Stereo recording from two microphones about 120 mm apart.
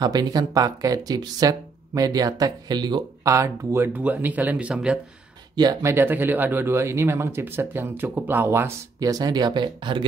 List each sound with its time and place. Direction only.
0.0 s speech: 35° right (ahead or behind); by 4.9 s 10° right (ahead or behind)
5.6 s speech: 30° right (ahead or behind)